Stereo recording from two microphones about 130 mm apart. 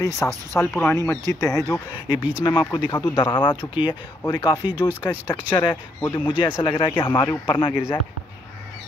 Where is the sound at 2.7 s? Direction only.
35° left (ahead or behind).